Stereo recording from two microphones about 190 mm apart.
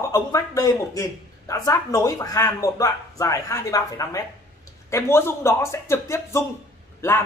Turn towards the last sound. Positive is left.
turn(degrees=15)  # may be behind; listen again after turning